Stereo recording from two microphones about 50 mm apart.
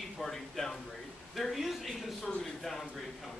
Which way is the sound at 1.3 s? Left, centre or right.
Centre.